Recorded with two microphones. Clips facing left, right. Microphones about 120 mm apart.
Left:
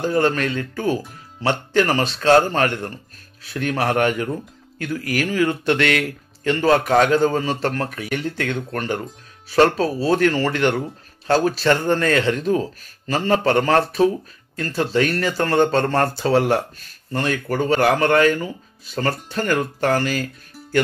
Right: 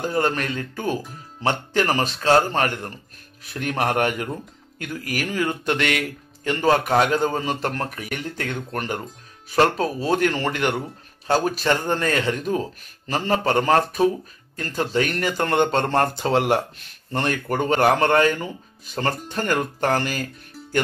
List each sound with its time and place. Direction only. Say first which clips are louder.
0.0 s speech: left 4 dB; 15° right (ahead or behind)